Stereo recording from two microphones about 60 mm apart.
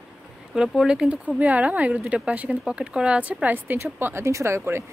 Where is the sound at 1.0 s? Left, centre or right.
Right.